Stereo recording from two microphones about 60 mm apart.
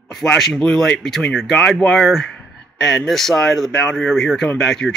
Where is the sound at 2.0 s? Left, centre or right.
Centre.